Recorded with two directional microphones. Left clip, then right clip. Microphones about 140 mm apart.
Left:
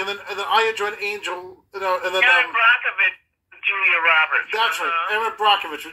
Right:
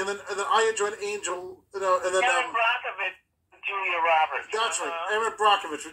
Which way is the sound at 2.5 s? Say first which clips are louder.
Left 9 dB; 45° right (ahead or behind).